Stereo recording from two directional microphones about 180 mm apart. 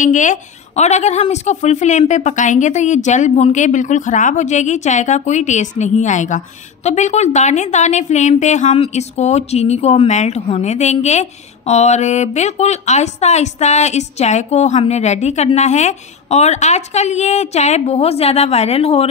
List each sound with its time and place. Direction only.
0.0 s a woman's voice: 45° left (ahead or behind)